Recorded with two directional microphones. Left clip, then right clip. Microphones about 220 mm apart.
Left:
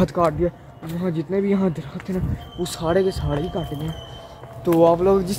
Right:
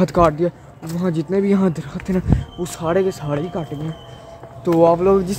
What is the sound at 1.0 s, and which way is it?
Speech, 20° right (ahead or behind).